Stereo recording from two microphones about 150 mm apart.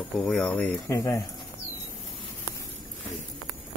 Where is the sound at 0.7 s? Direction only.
20° left (ahead or behind).